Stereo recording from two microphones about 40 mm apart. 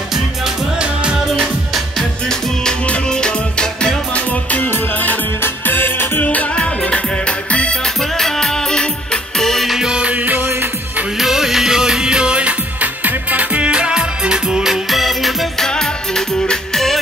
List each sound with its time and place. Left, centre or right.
3.1 s music: left
4.1 s music: left
5.4 s music: left
6.2 s music: left
7.8 s music: centre
9.8 s music: right
10.1 s music: right
11.1 s music: centre; by 13.7 s right
13.7 s music: right; by 15.3 s centre
15.7 s music: centre